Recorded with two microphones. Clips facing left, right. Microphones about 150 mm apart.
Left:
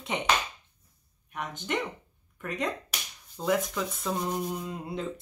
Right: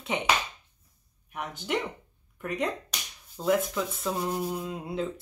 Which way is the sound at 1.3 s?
5° right (ahead or behind).